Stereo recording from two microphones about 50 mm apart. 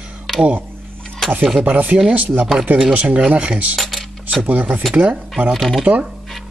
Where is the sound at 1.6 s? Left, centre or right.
Right.